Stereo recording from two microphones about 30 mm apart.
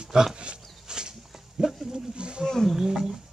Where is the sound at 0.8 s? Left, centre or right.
Right.